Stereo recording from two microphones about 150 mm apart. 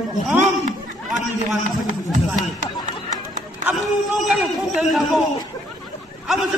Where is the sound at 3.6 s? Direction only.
5° right (ahead or behind).